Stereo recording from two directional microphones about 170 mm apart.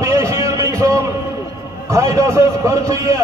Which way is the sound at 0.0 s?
15° right (ahead or behind).